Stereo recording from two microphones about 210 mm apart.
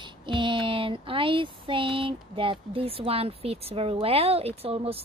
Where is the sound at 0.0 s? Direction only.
25° right (ahead or behind).